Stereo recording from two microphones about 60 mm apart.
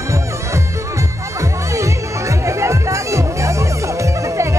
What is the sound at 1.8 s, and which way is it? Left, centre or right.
Music, right.